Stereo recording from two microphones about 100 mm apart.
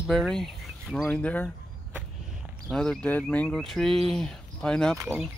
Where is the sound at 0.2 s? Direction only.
5° left (ahead or behind).